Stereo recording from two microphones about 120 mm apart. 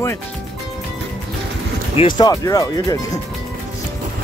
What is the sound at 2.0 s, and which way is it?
Speech, 35° left (ahead or behind).